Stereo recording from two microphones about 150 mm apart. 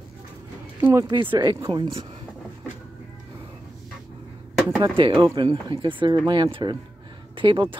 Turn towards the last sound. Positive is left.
turn(degrees=-35)  # may be behind; listen again after turning